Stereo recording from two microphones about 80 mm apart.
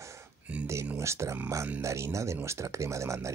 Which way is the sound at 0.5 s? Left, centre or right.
Centre.